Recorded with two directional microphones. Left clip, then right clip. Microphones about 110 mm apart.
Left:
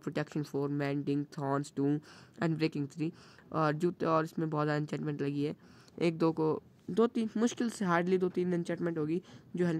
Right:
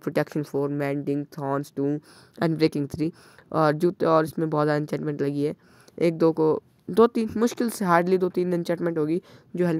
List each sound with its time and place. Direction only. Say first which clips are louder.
0.0 s speech: right 11 dB; 45° right (ahead or behind); by 1.9 s 20° right (ahead or behind)
2.3 s speech: right 10 dB; 45° right (ahead or behind)
6.9 s speech: right 11 dB; 60° right (ahead or behind)
7.2 s speech: right 8 dB; 40° right (ahead or behind)
8.7 s speech: right 9 dB; 40° right (ahead or behind)